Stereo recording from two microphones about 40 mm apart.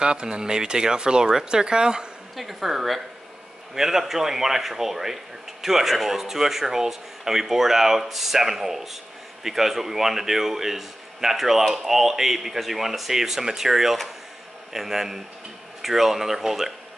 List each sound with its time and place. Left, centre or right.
0.0 s speech: right
2.3 s speech: centre